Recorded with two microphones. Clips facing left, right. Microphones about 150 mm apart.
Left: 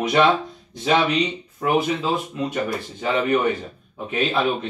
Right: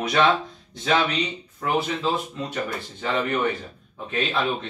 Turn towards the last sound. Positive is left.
turn(degrees=10)  # may be behind; listen again after turning